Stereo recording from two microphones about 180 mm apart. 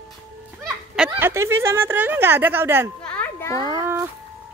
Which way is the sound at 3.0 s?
10° left (ahead or behind).